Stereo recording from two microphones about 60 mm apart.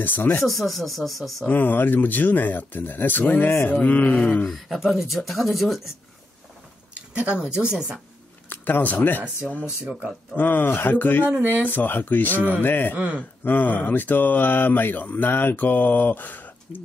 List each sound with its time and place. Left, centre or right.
0.0 s speech: left
0.5 s speech: centre
1.4 s speech: left
4.5 s speech: centre
7.2 s speech: centre
8.5 s speech: left
10.3 s speech: left
12.9 s speech: right
13.4 s speech: left